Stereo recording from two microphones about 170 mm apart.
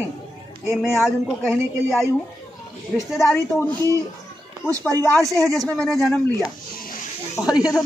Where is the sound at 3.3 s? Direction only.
10° left (ahead or behind).